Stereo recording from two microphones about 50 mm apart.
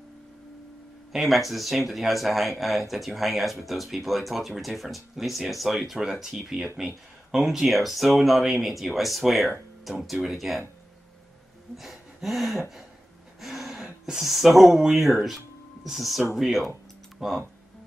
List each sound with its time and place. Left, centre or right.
1.1 s speech: centre
11.7 s a sound: centre
14.0 s speech: centre